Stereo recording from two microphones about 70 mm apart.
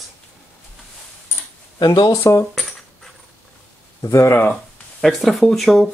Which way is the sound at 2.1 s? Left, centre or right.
Left.